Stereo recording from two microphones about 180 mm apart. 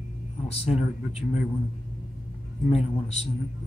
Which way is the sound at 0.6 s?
35° left (ahead or behind).